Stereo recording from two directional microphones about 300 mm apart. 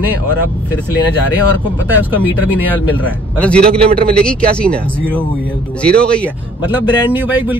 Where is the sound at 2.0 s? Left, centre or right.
Centre.